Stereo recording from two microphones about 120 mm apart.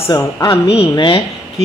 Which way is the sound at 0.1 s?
30° left (ahead or behind).